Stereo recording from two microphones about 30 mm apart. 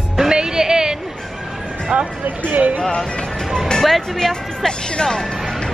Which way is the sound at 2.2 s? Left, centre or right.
Right.